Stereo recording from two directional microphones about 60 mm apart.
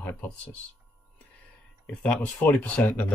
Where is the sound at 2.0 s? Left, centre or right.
Left.